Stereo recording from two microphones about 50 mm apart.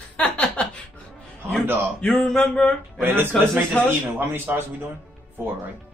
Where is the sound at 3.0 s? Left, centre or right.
Right.